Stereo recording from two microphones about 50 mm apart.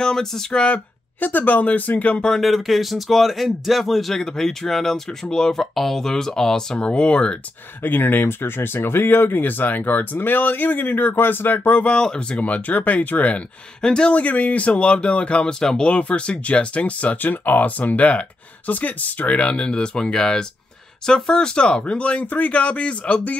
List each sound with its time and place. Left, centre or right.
0.0 s speech: centre
0.5 s speech: left
1.2 s speech: left
2.4 s speech: centre
7.8 s speech: left
11.8 s speech: centre; by 13.4 s left
13.7 s speech: centre
14.1 s speech: left
15.6 s speech: centre
15.9 s speech: left